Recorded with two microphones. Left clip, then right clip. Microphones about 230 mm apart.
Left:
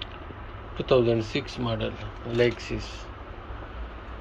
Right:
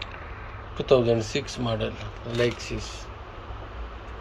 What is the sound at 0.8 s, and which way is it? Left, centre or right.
Speech, centre.